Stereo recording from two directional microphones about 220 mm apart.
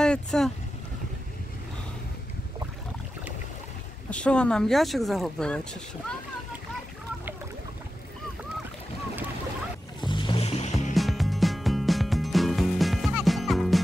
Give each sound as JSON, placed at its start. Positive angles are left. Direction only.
{"t": 0.0, "sound": "speech", "side_deg": 5}
{"t": 4.1, "sound": "speech", "side_deg": 5}
{"t": 10.0, "sound": "music", "side_deg": 20}
{"t": 11.0, "sound": "music", "side_deg": 0}